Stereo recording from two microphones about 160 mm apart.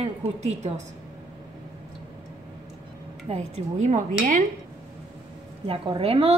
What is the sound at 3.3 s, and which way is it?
Speech, 45° right (ahead or behind).